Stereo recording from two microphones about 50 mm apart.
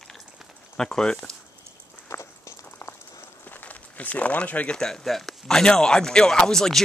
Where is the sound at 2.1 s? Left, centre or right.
Left.